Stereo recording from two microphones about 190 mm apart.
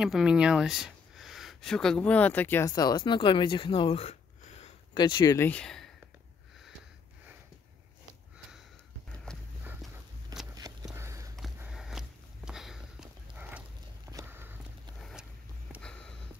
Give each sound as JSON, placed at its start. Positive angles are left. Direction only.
{"t": 0.0, "sound": "speech", "side_deg": -5}
{"t": 4.9, "sound": "speech", "side_deg": 25}
{"t": 10.5, "sound": "a sound", "side_deg": -20}
{"t": 11.3, "sound": "sniff", "side_deg": 0}
{"t": 15.0, "sound": "vehicle", "side_deg": 0}
{"t": 15.8, "sound": "a sound", "side_deg": 5}